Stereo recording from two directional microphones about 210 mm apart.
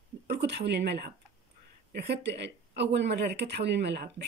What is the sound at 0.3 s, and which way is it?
Speech, 55° right (ahead or behind).